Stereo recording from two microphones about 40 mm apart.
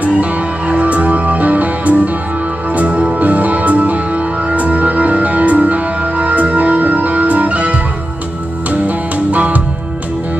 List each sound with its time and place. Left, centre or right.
0.0 s music: right
3.2 s music: right
8.8 s music: right